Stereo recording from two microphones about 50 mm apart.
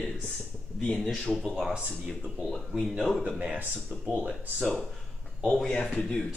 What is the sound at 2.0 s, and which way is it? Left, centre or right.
Speech, centre.